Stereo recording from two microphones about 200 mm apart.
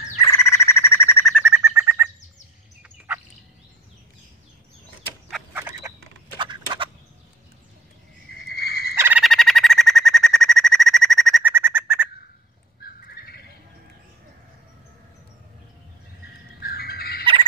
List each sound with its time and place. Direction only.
0.2 s bird: 15° left (ahead or behind)
1.2 s bird: 5° right (ahead or behind)
5.5 s frog: 10° right (ahead or behind)
6.3 s a sound: 25° right (ahead or behind)
8.5 s fowl: 50° left (ahead or behind)
8.9 s bird: 10° right (ahead or behind)
9.2 s bird: centre (ahead or behind)
11.5 s bird: 10° right (ahead or behind)
12.8 s bird: 50° left (ahead or behind)
16.6 s bird: 50° left (ahead or behind)
17.2 s a sound: 25° right (ahead or behind)